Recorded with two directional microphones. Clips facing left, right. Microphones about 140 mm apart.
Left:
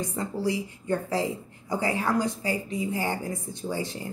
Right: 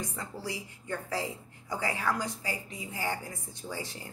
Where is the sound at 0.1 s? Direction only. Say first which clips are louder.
Left 10 dB; 25° left (ahead or behind).